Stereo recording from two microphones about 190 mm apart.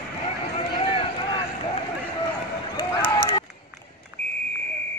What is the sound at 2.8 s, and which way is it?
Run, 25° left (ahead or behind).